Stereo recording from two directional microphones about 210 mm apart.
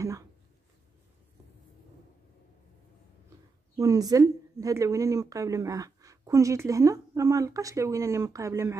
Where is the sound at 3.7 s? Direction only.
15° right (ahead or behind).